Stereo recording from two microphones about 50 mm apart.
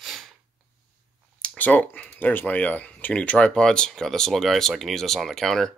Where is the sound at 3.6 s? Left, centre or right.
Centre.